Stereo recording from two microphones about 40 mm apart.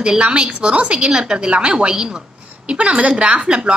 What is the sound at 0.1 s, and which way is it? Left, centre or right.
A woman's voice, right.